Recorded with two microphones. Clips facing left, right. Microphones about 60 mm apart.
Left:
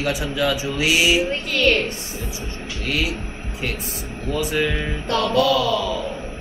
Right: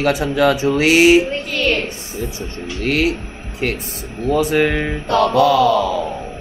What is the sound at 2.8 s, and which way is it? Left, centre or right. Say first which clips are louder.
Speech: right 7 dB; right.